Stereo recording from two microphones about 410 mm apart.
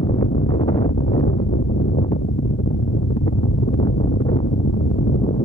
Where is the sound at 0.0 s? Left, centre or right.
Centre.